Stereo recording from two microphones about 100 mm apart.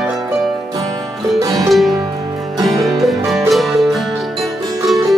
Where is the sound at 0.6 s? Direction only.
35° right (ahead or behind).